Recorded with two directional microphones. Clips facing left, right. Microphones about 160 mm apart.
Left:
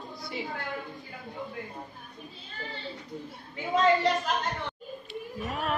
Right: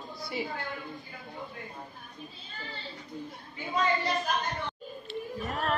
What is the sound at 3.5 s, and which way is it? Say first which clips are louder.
Speech: left 5 dB; 80° left.